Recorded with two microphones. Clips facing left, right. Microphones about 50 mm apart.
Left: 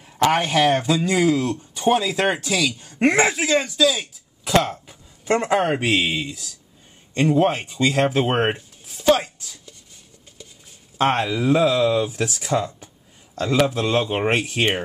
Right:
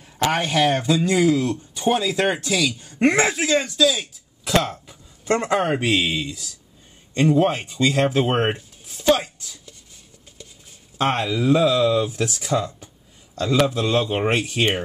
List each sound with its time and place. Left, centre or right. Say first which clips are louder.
0.0 s speech: left 3 dB; centre
11.0 s speech: left 1 dB; left